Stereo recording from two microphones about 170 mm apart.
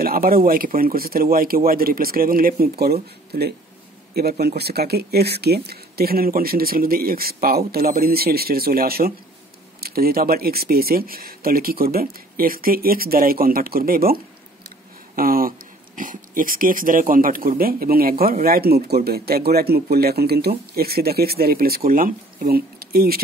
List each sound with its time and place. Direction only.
0.0 s speech: 60° right (ahead or behind)